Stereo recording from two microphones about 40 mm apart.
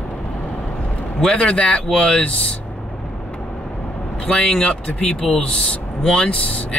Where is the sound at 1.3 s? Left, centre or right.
Left.